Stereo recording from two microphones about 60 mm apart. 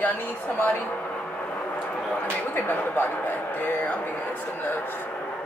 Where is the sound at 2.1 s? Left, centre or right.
Left.